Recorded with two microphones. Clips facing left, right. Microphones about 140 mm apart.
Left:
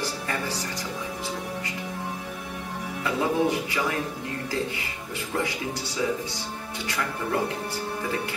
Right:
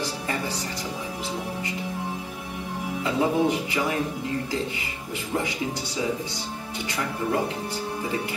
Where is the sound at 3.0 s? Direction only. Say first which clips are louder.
Right 1 dB; 20° right (ahead or behind).